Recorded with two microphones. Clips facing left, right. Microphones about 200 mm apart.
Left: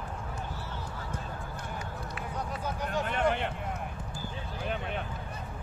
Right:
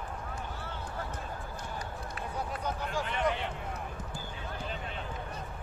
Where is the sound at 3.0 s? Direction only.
55° left (ahead or behind).